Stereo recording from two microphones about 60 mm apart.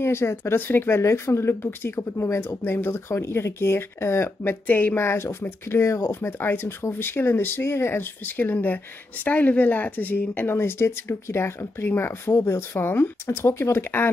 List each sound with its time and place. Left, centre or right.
0.0 s speech: left
5.0 s speech: left